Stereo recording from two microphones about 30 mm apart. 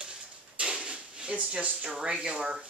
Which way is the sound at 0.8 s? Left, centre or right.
Right.